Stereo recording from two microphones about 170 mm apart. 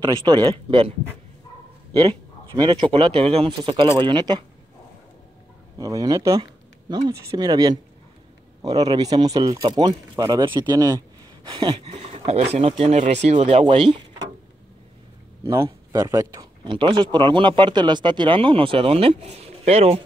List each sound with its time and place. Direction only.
0.0 s speech: 25° right (ahead or behind)
2.0 s speech: 25° right (ahead or behind)
5.8 s speech: 20° right (ahead or behind)
11.8 s speech: 40° right (ahead or behind)
15.4 s speech: 20° right (ahead or behind)
16.6 s speech: 30° right (ahead or behind)